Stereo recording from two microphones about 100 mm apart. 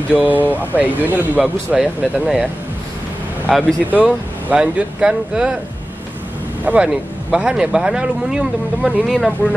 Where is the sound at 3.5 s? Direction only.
Centre (ahead or behind).